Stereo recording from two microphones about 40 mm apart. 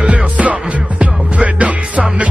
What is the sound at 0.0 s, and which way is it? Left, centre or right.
Music, right.